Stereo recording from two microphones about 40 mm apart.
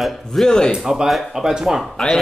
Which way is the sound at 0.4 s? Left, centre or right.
Centre.